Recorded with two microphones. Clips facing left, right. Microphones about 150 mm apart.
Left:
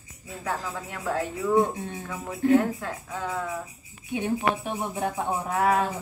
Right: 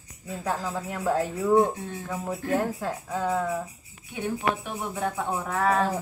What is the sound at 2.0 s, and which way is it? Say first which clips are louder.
Speech: left 6 dB; 20° right (ahead or behind).